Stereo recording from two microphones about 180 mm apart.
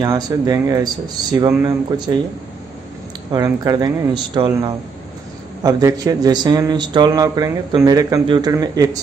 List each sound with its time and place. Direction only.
0.0 s a man's voice: 20° right (ahead or behind)
3.3 s a man's voice: 20° right (ahead or behind)
5.6 s a man's voice: 20° right (ahead or behind)